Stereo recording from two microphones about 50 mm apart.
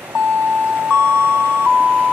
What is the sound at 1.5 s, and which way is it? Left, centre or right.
Music, right.